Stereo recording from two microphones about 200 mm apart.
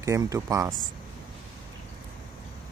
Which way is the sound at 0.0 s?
15° right (ahead or behind).